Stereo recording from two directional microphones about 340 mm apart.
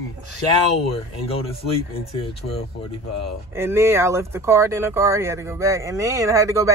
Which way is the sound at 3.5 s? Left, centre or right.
Centre.